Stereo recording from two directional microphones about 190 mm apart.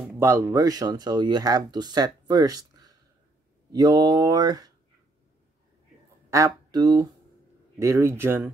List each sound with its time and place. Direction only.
0.0 s speech: 10° right (ahead or behind)
6.3 s speech: 20° right (ahead or behind)